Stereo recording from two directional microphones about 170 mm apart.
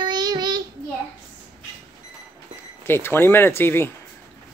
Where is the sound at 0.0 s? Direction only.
25° right (ahead or behind).